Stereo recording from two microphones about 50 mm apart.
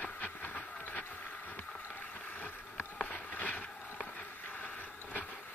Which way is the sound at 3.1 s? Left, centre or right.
Left.